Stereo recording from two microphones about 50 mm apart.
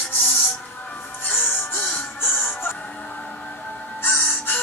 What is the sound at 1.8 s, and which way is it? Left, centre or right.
Music, left.